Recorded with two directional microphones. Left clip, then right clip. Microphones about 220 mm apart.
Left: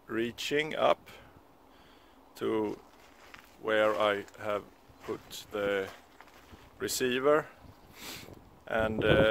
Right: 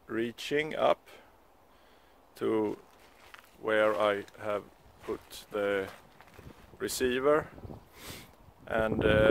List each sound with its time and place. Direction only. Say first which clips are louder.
0.0 s speech: left 1 dB; 5° right (ahead or behind)
2.3 s speech: right 2 dB; 20° right (ahead or behind)
3.9 s speech: even; 10° right (ahead or behind)
5.3 s speech: right 1 dB; 25° right (ahead or behind)